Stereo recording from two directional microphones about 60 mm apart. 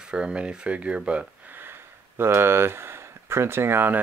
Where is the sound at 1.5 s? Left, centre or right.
Right.